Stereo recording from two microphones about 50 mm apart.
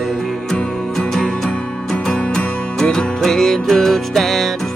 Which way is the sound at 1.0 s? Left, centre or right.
Centre.